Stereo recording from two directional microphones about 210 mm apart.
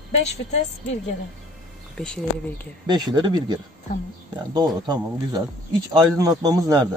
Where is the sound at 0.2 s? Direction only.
30° left (ahead or behind).